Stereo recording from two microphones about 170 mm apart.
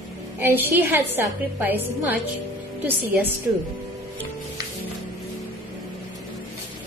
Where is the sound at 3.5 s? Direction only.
15° right (ahead or behind).